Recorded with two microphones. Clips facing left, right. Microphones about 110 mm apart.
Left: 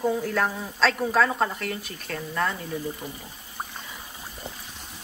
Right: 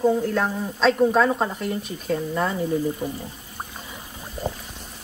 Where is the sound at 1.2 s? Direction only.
15° right (ahead or behind).